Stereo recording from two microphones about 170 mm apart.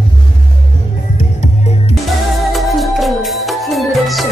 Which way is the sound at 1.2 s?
40° left (ahead or behind).